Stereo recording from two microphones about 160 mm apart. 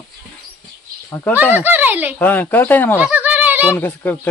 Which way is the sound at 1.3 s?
10° right (ahead or behind).